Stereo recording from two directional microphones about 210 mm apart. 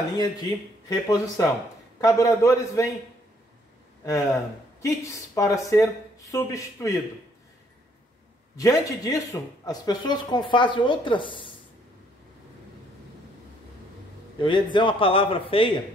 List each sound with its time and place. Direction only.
0.8 s speech: 15° left (ahead or behind)
4.0 s speech: 15° left (ahead or behind)
8.5 s a man's voice: 15° left (ahead or behind)
14.4 s a man's voice: 20° left (ahead or behind)